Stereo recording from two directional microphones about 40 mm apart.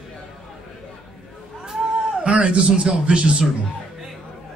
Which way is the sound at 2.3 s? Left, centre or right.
Right.